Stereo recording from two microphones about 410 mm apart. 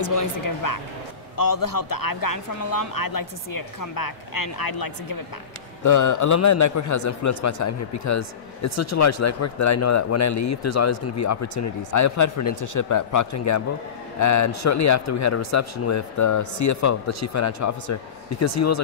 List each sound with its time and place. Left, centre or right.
0.0 s speech: left
5.9 s a man's voice: left